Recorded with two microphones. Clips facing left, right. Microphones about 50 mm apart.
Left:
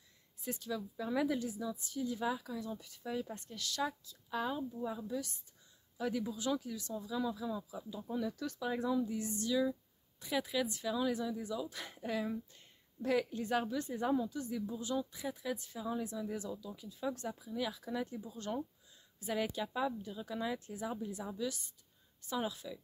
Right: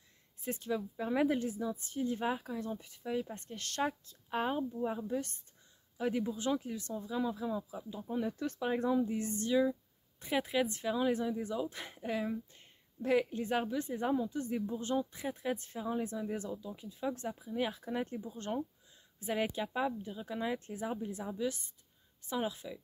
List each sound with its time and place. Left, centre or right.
0.4 s speech: right
3.5 s speech: right
5.9 s speech: right
14.3 s speech: right
20.5 s speech: right